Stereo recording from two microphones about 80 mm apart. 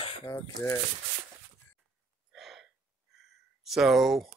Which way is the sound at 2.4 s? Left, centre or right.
Centre.